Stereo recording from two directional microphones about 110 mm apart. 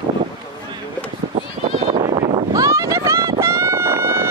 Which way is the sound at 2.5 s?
30° right (ahead or behind).